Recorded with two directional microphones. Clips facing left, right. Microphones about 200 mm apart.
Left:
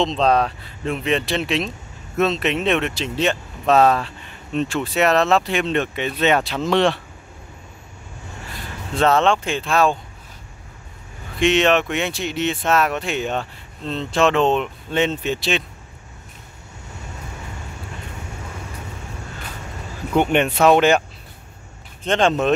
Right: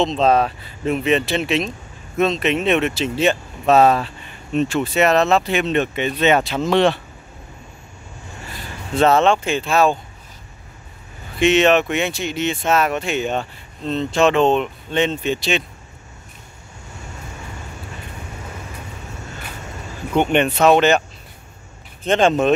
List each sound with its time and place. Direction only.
0.0 s speech: 5° right (ahead or behind)
8.9 s speech: 5° right (ahead or behind)
11.3 s speech: 5° right (ahead or behind)
20.2 s speech: 5° left (ahead or behind)
22.0 s speech: 5° right (ahead or behind)